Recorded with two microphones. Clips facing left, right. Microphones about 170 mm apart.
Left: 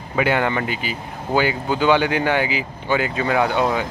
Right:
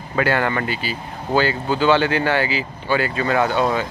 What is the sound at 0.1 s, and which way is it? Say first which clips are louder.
Speech: even; 15° left (ahead or behind).